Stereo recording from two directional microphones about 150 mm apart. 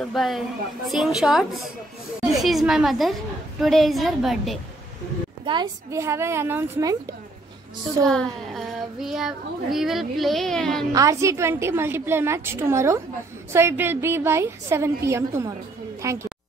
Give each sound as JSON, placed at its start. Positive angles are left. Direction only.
{"t": 0.0, "sound": "speech", "side_deg": 0}
{"t": 5.4, "sound": "a woman's voice", "side_deg": -30}
{"t": 5.9, "sound": "a woman's voice", "side_deg": -20}
{"t": 8.1, "sound": "speech", "side_deg": 5}
{"t": 10.9, "sound": "a woman's voice", "side_deg": -20}